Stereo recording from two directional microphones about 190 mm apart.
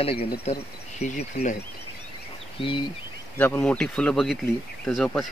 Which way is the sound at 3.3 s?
10° left (ahead or behind).